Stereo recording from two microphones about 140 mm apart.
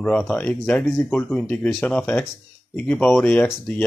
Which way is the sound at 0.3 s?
10° left (ahead or behind).